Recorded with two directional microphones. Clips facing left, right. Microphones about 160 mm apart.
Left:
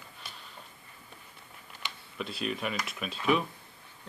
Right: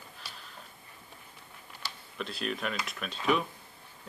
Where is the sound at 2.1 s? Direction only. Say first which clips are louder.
Left 1 dB; centre (ahead or behind).